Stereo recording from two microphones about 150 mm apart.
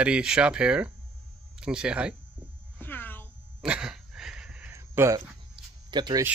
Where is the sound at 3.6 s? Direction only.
5° right (ahead or behind).